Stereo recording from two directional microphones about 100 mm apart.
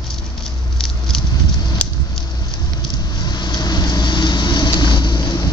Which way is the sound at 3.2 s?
45° left (ahead or behind).